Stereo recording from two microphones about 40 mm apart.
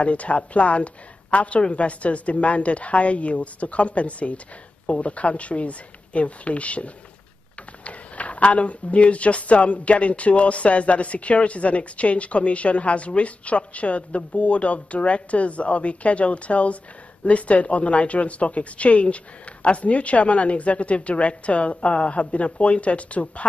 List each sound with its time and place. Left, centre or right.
0.0 s speech: left